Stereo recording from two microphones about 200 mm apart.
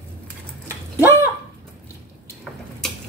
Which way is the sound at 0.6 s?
10° right (ahead or behind).